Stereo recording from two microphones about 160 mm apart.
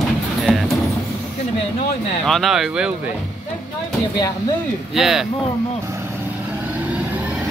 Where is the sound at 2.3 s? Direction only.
Centre (ahead or behind).